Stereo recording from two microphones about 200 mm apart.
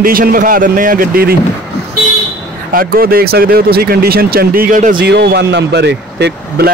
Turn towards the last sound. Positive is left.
turn(degrees=-55)  # may be behind; listen again after turning